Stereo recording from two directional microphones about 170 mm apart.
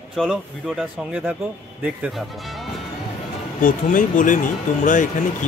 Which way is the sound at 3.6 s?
50° left (ahead or behind).